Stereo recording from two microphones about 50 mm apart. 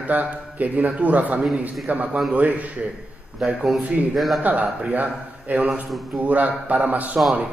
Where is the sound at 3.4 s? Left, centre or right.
Centre.